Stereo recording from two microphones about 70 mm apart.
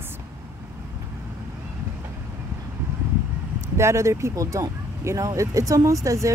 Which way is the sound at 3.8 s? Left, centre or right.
Right.